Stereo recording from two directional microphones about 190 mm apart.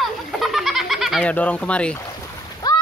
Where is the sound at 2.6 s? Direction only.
20° left (ahead or behind).